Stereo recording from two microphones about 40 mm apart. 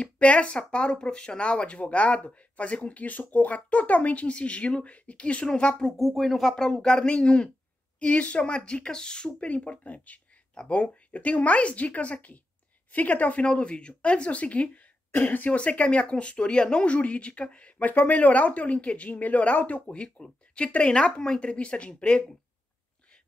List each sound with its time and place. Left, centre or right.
0.0 s speech: left
5.9 s speech: centre
6.5 s speech: centre; by 13.5 s left
13.5 s speech: left
15.0 s speech: left
15.5 s speech: left
17.8 s speech: left
19.9 s speech: left